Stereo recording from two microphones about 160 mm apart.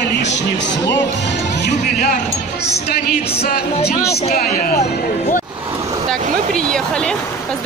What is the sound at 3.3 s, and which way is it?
Speech, 75° left (ahead or behind).